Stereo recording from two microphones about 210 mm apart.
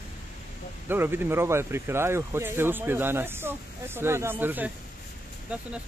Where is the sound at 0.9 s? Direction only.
10° right (ahead or behind).